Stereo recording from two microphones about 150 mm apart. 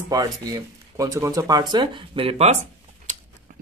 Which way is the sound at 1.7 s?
35° right (ahead or behind).